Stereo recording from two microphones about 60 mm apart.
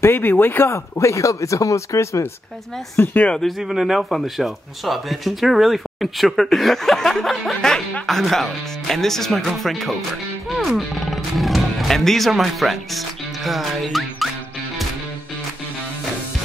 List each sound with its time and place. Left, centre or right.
0.0 s speech: left
0.7 s speech: left
3.3 s speech: centre